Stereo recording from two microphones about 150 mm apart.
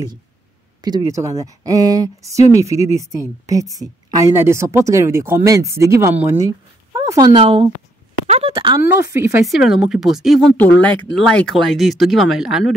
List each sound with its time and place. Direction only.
0.8 s a woman's voice: 25° right (ahead or behind)
6.9 s a sound: 25° right (ahead or behind)
7.4 s speech: 40° right (ahead or behind)
8.3 s a sound: 45° right (ahead or behind)
8.5 s a woman's voice: 25° right (ahead or behind)
9.4 s speech: centre (ahead or behind)
10.6 s speech: 10° left (ahead or behind)